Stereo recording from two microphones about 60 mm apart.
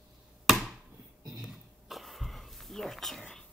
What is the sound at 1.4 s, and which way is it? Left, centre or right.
Cough, centre.